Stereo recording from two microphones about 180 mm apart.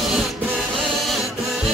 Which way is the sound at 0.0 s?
Centre (ahead or behind).